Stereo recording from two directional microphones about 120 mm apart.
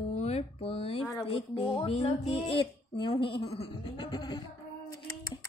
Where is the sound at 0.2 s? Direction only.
60° left (ahead or behind).